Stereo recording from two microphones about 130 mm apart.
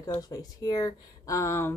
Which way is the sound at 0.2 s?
30° left (ahead or behind).